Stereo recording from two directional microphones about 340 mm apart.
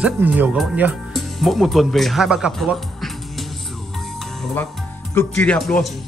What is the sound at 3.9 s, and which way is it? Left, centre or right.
Music, centre.